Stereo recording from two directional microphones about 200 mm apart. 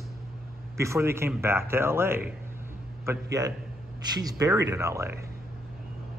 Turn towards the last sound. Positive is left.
turn(degrees=-15)  # may be behind; listen again after turning